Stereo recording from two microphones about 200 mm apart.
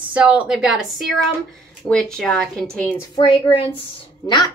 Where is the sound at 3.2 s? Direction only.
25° left (ahead or behind).